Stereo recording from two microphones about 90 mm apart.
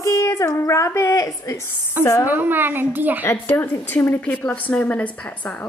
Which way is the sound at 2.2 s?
20° right (ahead or behind).